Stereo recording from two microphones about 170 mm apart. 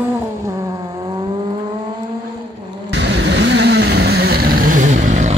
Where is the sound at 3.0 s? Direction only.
85° right; by 5.4 s 45° right (ahead or behind).